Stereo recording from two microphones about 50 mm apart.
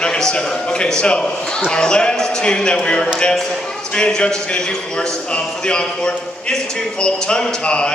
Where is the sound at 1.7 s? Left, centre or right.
Centre.